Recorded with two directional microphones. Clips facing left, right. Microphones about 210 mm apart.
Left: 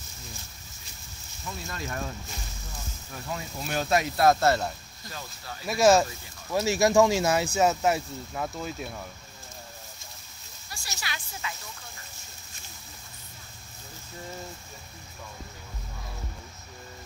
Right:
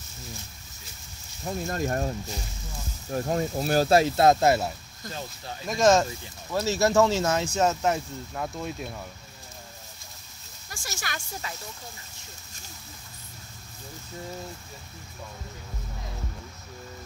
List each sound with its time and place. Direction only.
1.4 s speech: 45° right (ahead or behind); by 4.7 s 10° right (ahead or behind)
5.7 s speech: 10° left (ahead or behind)
10.7 s speech: 50° right (ahead or behind)